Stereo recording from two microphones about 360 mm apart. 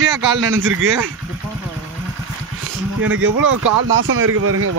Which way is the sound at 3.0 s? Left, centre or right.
Right.